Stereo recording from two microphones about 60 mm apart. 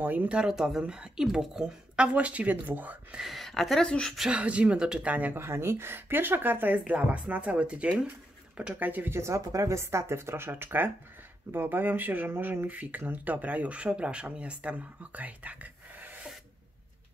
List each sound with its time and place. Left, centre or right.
0.0 s speech: right
0.3 s speech: centre
2.1 s speech: right
3.2 s speech: centre
3.8 s a woman's voice: centre
4.3 s speech: right
5.1 s speech: right
5.4 s speech: right
9.1 s speech: right